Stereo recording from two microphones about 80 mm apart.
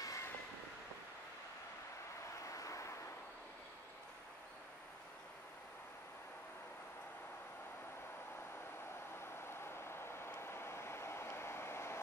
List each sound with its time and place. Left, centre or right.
0.0 s vehicle: left
2.4 s vehicle: left
9.1 s vehicle: left